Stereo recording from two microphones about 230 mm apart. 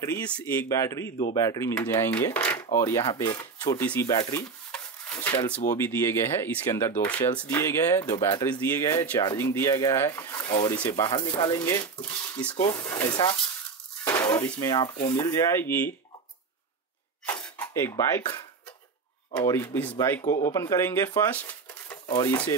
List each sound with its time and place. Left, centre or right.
0.0 s speech: centre
14.0 s dishes: centre
14.5 s speech: centre
17.3 s dishes: centre
19.3 s speech: centre